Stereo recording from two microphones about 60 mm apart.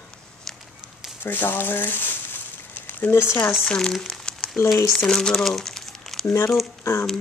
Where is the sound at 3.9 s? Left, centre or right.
Centre.